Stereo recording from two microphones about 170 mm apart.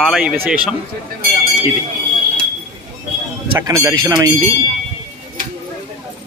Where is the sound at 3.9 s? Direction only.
25° right (ahead or behind).